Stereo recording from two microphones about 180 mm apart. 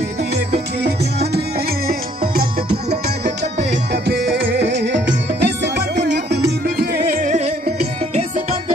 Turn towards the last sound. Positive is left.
turn(degrees=-45)  # may be behind; listen again after turning